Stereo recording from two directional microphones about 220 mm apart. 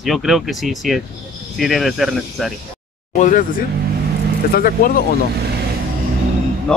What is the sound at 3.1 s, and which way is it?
Speech, 35° left (ahead or behind).